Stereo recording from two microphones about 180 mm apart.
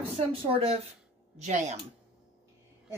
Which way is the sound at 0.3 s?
35° right (ahead or behind).